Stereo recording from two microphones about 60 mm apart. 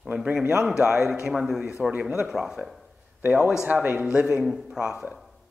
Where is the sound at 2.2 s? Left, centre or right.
Centre.